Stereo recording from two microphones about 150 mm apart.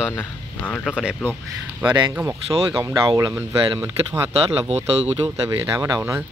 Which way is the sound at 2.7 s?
20° right (ahead or behind).